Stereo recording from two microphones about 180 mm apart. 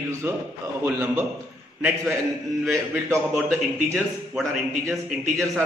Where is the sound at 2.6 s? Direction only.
Centre (ahead or behind).